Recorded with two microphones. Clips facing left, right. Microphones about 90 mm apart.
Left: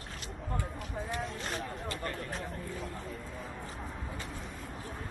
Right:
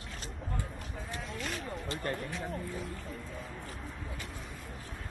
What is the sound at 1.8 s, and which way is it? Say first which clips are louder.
Speech: right 1 dB; 25° right (ahead or behind).